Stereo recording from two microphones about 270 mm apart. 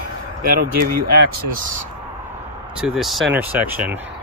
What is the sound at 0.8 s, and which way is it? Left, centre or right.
Speech, right.